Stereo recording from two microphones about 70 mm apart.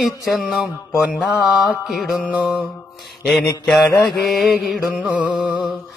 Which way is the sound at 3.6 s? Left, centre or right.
Centre.